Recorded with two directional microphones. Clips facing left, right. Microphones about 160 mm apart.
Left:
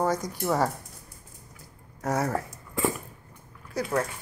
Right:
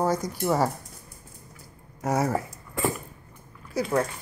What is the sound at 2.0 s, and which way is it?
Speech, 5° right (ahead or behind).